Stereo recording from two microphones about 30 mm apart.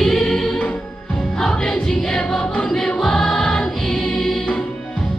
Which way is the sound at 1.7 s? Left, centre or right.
Centre.